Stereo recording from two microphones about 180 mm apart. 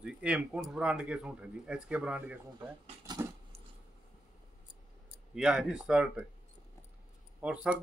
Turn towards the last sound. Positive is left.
turn(degrees=-5)  # may be behind; listen again after turning